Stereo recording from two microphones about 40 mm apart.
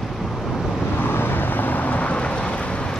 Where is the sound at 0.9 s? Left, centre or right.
Left.